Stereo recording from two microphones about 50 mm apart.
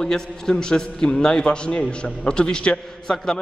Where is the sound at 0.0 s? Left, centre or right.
Centre.